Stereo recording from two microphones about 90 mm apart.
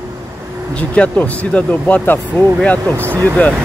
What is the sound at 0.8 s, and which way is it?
Speech, 15° left (ahead or behind).